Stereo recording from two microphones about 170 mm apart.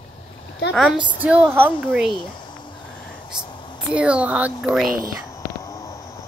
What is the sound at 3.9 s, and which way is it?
Speech, 5° right (ahead or behind).